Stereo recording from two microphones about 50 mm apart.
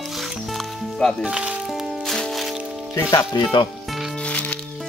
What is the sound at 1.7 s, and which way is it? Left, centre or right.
Music, centre.